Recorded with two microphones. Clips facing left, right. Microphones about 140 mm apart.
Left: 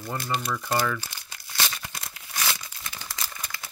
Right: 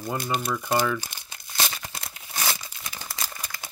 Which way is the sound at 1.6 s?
40° right (ahead or behind).